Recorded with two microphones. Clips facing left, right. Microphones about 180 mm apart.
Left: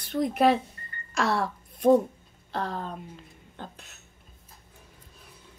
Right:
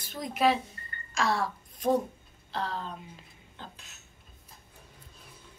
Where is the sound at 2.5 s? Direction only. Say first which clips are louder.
Left 3 dB; 50° left (ahead or behind).